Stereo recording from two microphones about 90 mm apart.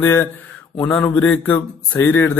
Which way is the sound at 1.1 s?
15° left (ahead or behind).